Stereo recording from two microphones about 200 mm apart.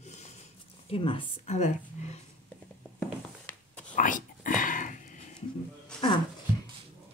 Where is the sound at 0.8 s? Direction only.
25° left (ahead or behind).